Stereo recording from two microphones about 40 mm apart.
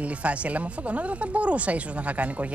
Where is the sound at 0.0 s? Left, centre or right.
Right.